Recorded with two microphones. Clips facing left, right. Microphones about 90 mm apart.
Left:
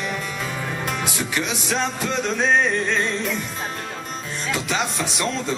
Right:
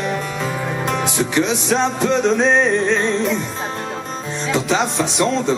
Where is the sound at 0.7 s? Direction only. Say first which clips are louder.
Right 5 dB; 20° right (ahead or behind).